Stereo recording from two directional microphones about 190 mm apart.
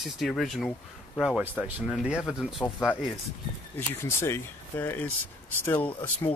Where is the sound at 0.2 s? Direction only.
Centre (ahead or behind).